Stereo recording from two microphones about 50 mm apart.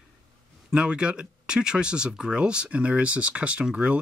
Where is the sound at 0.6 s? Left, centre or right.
Centre.